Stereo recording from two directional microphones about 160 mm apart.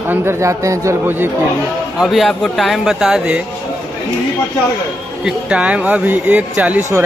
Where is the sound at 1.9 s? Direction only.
Centre (ahead or behind).